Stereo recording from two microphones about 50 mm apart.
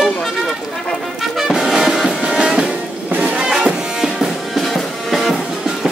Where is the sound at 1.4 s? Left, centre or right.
Centre.